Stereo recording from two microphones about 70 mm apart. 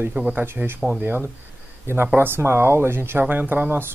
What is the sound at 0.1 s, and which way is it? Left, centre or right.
Speech, centre.